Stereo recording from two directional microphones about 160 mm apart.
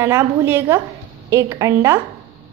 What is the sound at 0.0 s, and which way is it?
A woman's voice, 15° right (ahead or behind).